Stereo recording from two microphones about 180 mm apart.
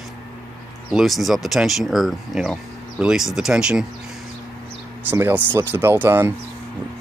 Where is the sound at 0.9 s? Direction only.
Centre (ahead or behind).